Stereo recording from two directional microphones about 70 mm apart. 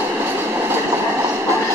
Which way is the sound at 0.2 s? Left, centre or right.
Right.